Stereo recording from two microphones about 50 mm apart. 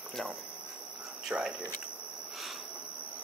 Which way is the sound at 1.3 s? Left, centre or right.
Right.